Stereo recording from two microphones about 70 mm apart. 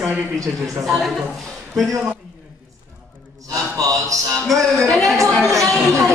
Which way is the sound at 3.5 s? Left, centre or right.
Right.